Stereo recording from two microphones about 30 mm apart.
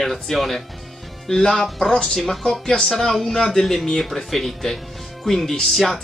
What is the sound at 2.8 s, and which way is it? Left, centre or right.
Speech, centre.